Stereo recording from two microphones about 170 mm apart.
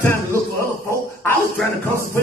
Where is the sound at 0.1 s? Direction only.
15° left (ahead or behind).